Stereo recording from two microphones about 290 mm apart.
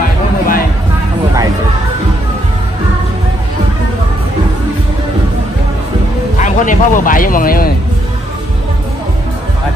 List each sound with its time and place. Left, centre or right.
6.3 s speech: left